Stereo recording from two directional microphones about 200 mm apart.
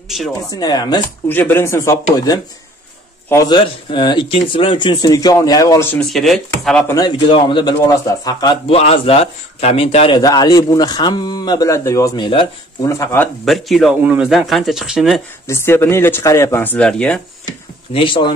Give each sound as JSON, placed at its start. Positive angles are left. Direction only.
{"t": 0.5, "sound": "a man's voice", "side_deg": 20}
{"t": 5.9, "sound": "speech", "side_deg": 0}
{"t": 6.9, "sound": "a man's voice", "side_deg": 20}
{"t": 12.8, "sound": "speech", "side_deg": 15}
{"t": 15.4, "sound": "speech", "side_deg": 15}
{"t": 17.9, "sound": "a man's voice", "side_deg": 25}